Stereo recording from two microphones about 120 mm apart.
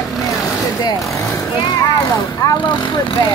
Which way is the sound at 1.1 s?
25° left (ahead or behind).